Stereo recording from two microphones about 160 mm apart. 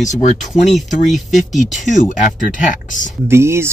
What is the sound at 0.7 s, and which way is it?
Speech, centre (ahead or behind).